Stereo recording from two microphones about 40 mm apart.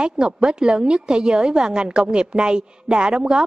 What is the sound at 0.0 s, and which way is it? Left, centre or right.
A woman's voice, right.